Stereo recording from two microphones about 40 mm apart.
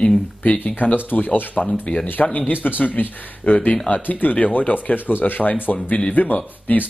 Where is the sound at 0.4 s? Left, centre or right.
Left.